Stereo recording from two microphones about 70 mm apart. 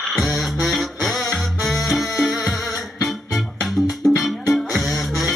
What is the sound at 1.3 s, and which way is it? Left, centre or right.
Music, centre.